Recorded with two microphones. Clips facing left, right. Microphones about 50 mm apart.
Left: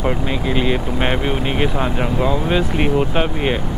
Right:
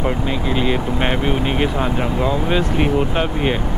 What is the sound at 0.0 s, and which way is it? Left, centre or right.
Speech, centre.